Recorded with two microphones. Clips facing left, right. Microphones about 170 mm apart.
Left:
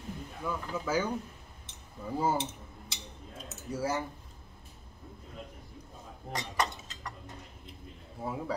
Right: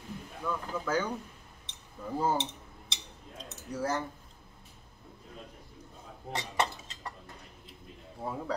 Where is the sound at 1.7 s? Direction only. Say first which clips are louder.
Even; 5° left (ahead or behind).